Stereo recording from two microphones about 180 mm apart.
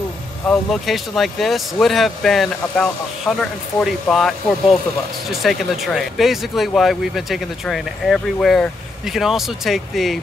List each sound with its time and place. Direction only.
0.5 s speech: centre (ahead or behind)